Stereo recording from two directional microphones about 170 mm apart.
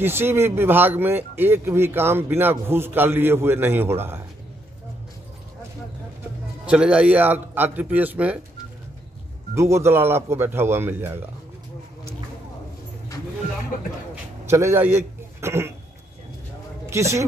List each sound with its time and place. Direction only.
0.0 s speech: 15° right (ahead or behind)
6.6 s speech: 5° right (ahead or behind)
9.6 s speech: 15° right (ahead or behind)
14.4 s a man's voice: 15° right (ahead or behind)
16.8 s a man's voice: 15° right (ahead or behind)